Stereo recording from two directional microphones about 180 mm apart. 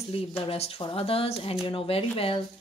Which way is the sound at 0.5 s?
30° left (ahead or behind).